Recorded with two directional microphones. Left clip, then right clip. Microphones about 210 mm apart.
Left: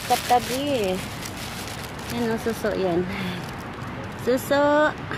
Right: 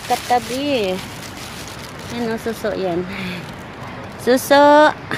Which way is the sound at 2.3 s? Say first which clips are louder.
Right 3 dB; 10° right (ahead or behind).